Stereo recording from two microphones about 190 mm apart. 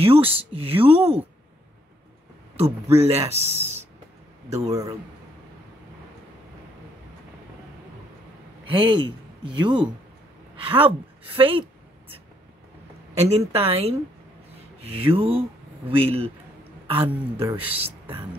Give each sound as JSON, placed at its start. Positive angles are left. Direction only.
{"t": 0.0, "sound": "speech", "side_deg": -30}
{"t": 3.0, "sound": "speech", "side_deg": -35}
{"t": 8.6, "sound": "a woman's voice", "side_deg": -25}
{"t": 13.1, "sound": "speech", "side_deg": -35}
{"t": 17.5, "sound": "speech", "side_deg": -10}